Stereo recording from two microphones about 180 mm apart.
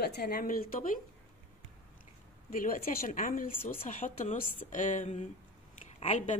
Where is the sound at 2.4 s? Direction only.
50° left (ahead or behind).